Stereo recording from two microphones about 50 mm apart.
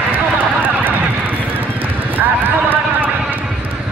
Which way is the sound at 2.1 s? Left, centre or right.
Right.